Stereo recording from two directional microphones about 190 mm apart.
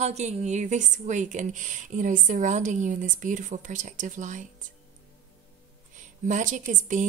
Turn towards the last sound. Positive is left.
turn(degrees=-40)  # may be behind; listen again after turning